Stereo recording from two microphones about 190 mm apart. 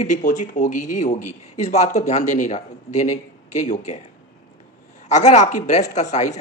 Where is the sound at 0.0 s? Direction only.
40° left (ahead or behind).